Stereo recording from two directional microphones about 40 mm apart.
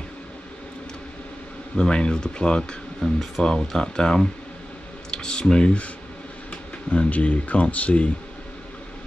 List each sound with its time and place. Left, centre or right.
1.8 s speech: left
3.0 s speech: centre
3.7 s speech: centre
6.9 s speech: left